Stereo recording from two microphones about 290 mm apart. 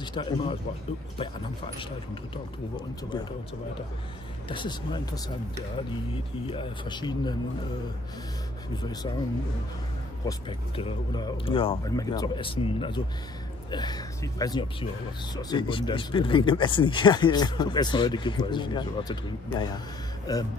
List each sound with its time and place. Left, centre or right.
0.0 s speech: centre
4.5 s speech: centre
6.4 s speech: centre
10.8 s speech: centre